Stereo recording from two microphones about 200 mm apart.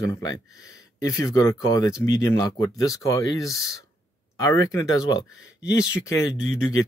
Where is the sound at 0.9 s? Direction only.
15° left (ahead or behind).